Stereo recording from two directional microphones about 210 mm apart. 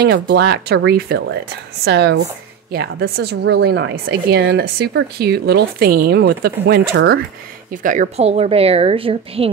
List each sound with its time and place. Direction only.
0.0 s a woman's voice: 50° right (ahead or behind)
7.7 s a woman's voice: 40° right (ahead or behind)